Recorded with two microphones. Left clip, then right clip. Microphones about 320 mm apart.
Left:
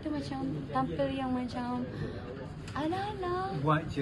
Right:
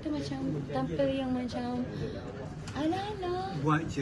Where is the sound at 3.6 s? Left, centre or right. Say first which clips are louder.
Right 1 dB; left.